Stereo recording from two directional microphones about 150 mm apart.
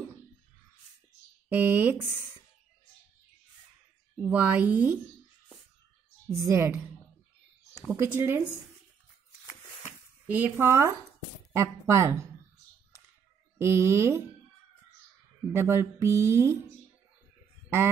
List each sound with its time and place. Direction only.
1.5 s speech: 10° right (ahead or behind)
4.2 s speech: 10° right (ahead or behind)
6.2 s a woman's voice: 20° right (ahead or behind)
7.9 s speech: 15° right (ahead or behind)
10.2 s a woman's voice: 10° right (ahead or behind)
13.6 s speech: 15° right (ahead or behind)
15.5 s speech: 15° right (ahead or behind)